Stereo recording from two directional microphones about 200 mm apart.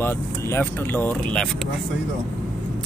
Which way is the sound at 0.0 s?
10° left (ahead or behind).